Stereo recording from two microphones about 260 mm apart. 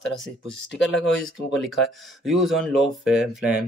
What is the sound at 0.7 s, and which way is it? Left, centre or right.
Speech, left.